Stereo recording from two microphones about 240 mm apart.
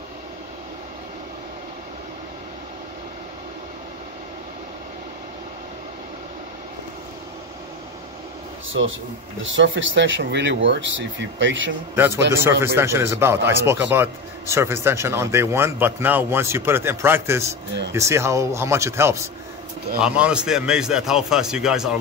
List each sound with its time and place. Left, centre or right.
8.8 s speech: right
11.9 s a man's voice: centre